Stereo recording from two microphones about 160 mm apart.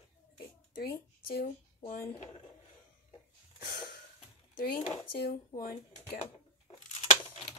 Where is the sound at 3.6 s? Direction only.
70° left (ahead or behind).